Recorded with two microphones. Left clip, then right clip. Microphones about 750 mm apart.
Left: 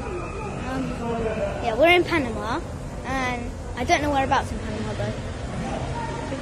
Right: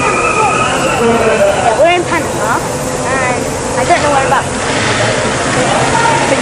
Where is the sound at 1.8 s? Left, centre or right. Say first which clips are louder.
Right 3 dB; left.